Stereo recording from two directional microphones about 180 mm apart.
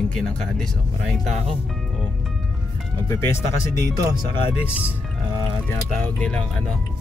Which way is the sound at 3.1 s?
15° left (ahead or behind).